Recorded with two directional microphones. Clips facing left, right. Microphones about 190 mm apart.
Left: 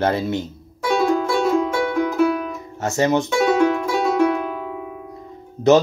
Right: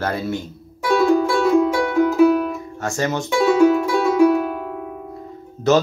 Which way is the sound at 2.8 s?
20° left (ahead or behind).